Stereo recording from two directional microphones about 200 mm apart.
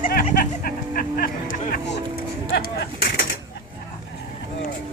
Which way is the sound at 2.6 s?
50° left (ahead or behind).